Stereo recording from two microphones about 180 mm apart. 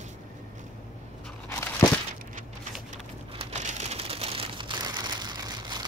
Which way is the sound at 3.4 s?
40° right (ahead or behind).